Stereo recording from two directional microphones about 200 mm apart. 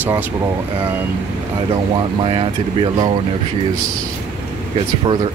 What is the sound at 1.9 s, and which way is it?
Speech, 25° right (ahead or behind).